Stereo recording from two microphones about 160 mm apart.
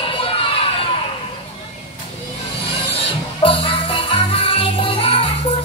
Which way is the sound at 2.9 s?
35° left (ahead or behind).